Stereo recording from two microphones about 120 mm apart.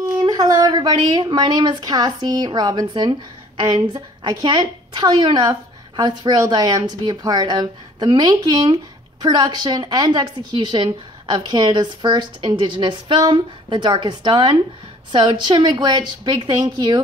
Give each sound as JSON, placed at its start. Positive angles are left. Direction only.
{"t": 0.2, "sound": "speech", "side_deg": -35}